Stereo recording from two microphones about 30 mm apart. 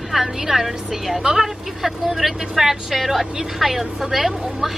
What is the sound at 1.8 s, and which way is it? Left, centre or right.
A woman's voice, centre.